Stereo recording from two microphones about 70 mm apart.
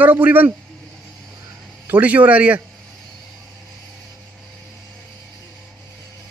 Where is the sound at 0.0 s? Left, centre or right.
Right.